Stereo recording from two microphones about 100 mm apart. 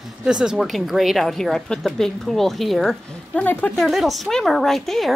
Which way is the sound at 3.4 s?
15° left (ahead or behind).